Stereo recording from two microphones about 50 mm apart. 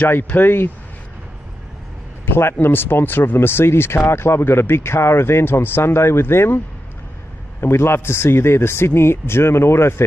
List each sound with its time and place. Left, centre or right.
0.4 s speech: left
2.2 s a man's voice: left
7.6 s speech: left